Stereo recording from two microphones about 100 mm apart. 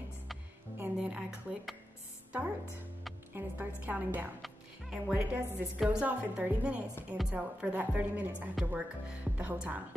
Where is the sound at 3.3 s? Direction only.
20° right (ahead or behind).